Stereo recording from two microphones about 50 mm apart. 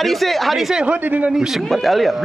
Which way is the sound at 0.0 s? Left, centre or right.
Centre.